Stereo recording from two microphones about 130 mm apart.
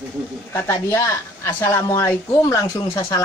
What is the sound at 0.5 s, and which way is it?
Speech, 20° left (ahead or behind).